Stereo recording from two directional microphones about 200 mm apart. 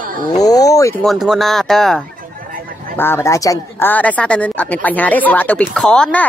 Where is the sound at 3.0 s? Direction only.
10° left (ahead or behind).